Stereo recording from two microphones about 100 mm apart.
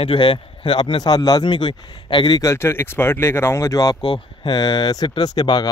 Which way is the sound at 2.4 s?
30° left (ahead or behind).